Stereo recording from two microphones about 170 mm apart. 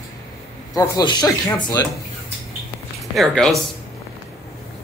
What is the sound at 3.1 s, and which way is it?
Speech, centre (ahead or behind).